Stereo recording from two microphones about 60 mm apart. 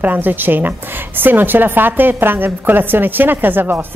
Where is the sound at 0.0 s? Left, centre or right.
Right.